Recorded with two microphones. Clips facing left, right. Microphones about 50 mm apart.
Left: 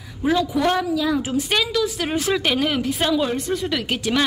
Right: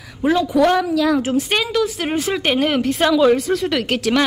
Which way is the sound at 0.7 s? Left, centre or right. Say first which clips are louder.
Right 4 dB; right.